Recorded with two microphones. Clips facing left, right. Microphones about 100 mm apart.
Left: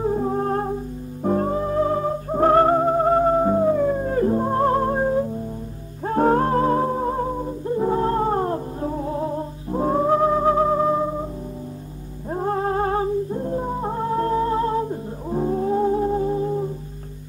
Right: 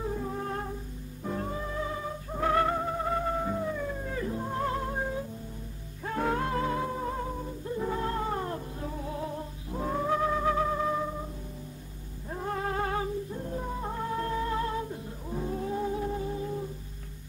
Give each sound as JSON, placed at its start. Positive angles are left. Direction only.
{"t": 0.0, "sound": "music", "side_deg": 40}
{"t": 12.3, "sound": "music", "side_deg": 40}